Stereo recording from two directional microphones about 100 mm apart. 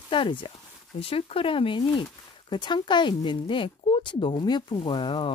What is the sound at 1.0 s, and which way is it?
Speech, 70° left (ahead or behind).